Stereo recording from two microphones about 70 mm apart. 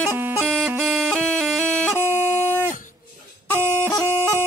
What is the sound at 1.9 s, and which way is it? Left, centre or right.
Music, left.